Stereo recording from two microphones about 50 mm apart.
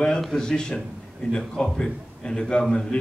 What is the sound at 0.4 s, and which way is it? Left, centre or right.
A man's voice, centre.